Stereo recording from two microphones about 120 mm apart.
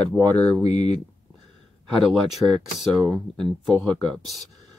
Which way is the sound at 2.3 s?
5° left (ahead or behind).